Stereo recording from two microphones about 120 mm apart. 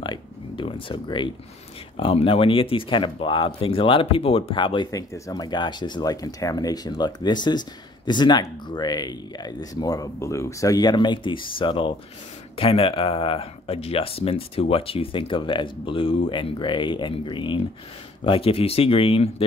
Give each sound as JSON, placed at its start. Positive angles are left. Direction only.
{"t": 0.0, "sound": "a sound", "side_deg": 45}
{"t": 2.0, "sound": "speech", "side_deg": 50}
{"t": 4.9, "sound": "speech", "side_deg": 30}